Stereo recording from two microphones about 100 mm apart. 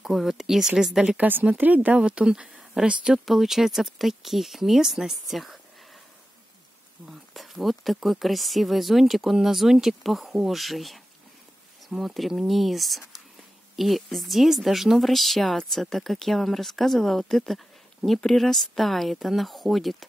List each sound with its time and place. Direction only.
0.0 s speech: centre (ahead or behind)
7.1 s speech: centre (ahead or behind)